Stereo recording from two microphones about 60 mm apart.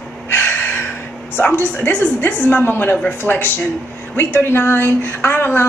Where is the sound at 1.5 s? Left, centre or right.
Left.